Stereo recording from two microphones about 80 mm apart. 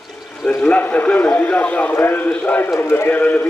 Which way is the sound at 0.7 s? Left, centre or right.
Left.